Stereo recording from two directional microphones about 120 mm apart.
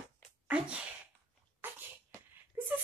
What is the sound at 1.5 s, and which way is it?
Sneeze, 15° right (ahead or behind).